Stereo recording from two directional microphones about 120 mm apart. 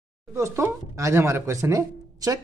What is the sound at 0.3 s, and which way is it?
Speech, 20° right (ahead or behind).